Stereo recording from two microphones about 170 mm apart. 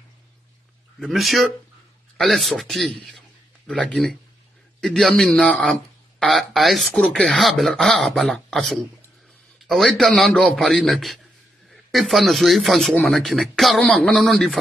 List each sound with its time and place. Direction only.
0.9 s a man's voice: centre (ahead or behind)